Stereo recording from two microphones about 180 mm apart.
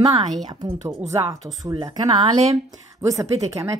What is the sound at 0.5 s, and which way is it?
Speech, 25° right (ahead or behind).